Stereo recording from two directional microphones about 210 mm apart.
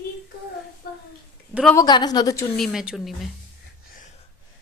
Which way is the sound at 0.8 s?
45° left (ahead or behind).